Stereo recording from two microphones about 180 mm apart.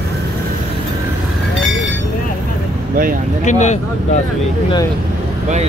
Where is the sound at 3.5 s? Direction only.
40° left (ahead or behind).